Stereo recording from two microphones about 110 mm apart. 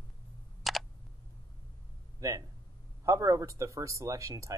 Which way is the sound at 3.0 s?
30° right (ahead or behind).